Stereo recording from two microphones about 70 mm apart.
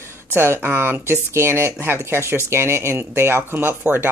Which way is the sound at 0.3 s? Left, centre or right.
Right.